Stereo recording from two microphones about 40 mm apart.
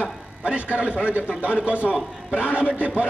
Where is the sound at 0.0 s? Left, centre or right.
Right.